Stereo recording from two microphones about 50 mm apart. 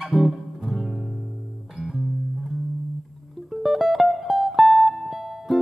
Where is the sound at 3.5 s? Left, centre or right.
Centre.